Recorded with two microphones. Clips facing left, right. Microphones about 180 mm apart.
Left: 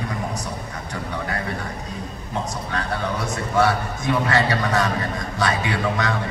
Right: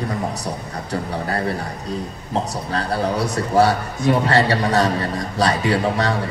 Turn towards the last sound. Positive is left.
turn(degrees=-35)  # may be behind; listen again after turning